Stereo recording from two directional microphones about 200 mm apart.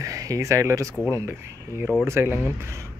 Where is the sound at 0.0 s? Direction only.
15° right (ahead or behind).